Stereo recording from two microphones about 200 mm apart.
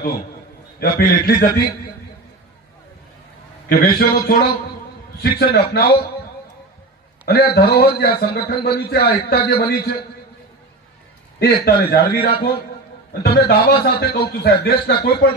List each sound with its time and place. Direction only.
0.7 s a man's voice: 50° left (ahead or behind)
3.7 s a man's voice: 50° left (ahead or behind)
7.2 s a man's voice: 50° left (ahead or behind)
11.3 s a man's voice: 50° left (ahead or behind)